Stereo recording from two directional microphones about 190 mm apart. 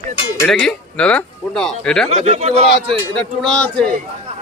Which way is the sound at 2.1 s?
35° right (ahead or behind).